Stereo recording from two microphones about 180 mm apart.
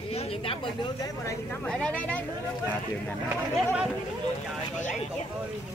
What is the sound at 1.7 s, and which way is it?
Speech, 5° left (ahead or behind).